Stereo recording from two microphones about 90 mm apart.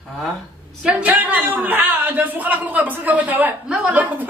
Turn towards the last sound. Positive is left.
turn(degrees=-15)  # may be behind; listen again after turning